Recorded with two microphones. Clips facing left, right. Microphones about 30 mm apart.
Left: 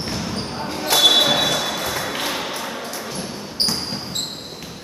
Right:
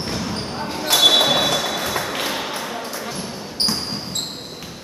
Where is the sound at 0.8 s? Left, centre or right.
Centre.